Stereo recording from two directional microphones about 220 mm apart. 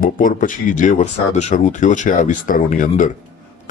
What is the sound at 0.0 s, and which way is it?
Speech, 35° left (ahead or behind).